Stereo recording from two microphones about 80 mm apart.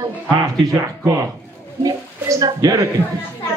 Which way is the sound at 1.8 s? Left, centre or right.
Right.